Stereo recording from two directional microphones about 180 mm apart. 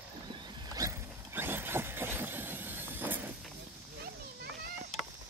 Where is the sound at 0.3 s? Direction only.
20° right (ahead or behind).